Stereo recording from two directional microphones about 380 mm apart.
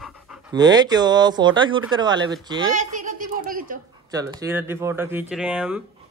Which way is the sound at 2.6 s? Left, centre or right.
Right.